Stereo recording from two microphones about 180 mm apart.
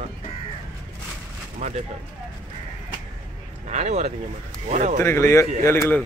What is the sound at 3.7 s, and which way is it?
Speech, 40° right (ahead or behind).